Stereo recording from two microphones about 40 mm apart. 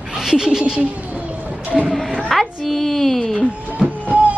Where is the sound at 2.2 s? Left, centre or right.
Centre.